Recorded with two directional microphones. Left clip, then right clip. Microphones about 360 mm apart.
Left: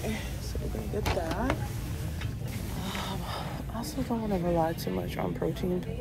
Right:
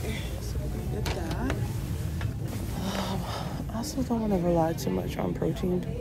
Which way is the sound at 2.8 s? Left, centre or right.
Centre.